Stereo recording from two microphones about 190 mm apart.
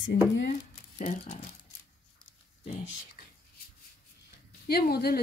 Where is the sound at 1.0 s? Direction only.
35° left (ahead or behind).